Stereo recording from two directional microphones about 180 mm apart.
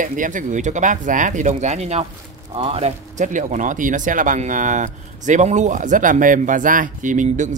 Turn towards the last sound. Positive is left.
turn(degrees=-45)  # may be behind; listen again after turning